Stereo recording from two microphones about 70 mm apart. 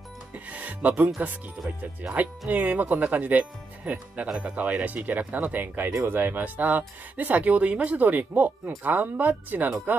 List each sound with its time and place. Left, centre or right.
0.5 s music: right
2.5 s speech: right